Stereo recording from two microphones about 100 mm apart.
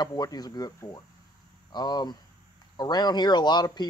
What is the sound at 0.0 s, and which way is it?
A man's voice, 40° left (ahead or behind).